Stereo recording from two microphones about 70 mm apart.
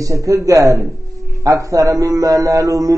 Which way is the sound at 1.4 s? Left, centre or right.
Right.